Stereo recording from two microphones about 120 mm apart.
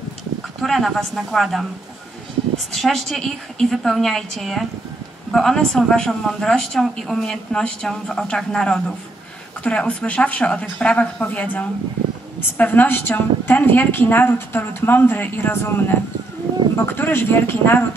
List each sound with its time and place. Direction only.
0.6 s a woman's voice: centre (ahead or behind)
2.7 s a woman's voice: 5° left (ahead or behind)